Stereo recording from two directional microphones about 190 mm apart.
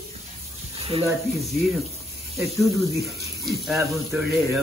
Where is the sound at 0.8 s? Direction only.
30° right (ahead or behind).